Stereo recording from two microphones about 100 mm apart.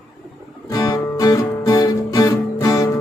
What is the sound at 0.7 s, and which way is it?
Music, 40° left (ahead or behind).